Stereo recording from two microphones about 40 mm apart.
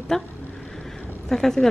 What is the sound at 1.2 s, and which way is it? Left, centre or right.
Speech, centre.